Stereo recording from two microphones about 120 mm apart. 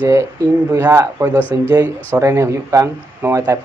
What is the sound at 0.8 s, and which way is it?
Speech, 25° right (ahead or behind).